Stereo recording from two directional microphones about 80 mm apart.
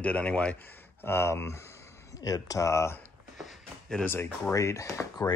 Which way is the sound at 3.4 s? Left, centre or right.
Centre.